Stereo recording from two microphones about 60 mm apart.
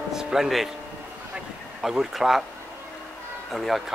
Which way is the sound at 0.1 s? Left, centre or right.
Centre.